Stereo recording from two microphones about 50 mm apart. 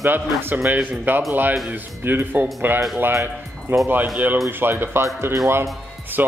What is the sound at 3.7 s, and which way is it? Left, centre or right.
Speech, right.